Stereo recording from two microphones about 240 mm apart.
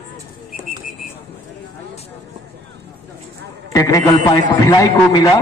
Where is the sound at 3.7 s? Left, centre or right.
Centre.